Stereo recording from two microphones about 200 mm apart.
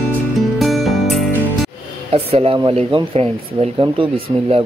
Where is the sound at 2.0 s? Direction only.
30° right (ahead or behind).